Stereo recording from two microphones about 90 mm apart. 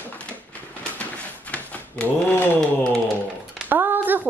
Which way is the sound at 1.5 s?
15° left (ahead or behind).